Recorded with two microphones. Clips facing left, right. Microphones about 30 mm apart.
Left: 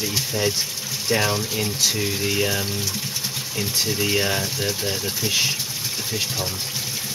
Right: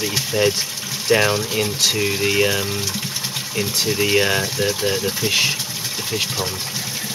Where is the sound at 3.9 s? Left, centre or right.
Right.